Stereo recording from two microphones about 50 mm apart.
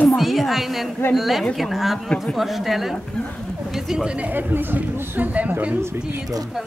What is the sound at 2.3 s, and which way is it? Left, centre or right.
A woman's voice, centre.